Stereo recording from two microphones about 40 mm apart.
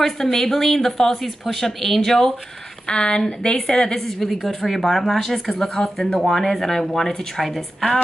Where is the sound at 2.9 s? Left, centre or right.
Left.